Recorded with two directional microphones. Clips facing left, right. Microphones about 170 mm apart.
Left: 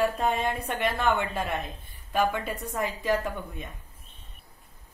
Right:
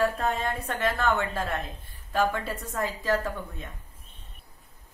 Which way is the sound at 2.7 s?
20° left (ahead or behind).